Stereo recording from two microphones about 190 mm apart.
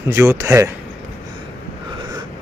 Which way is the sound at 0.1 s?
15° right (ahead or behind).